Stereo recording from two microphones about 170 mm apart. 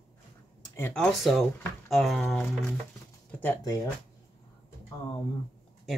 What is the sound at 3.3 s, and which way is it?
Speech, 15° left (ahead or behind).